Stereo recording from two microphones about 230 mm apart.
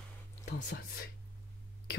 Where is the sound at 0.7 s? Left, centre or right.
Left.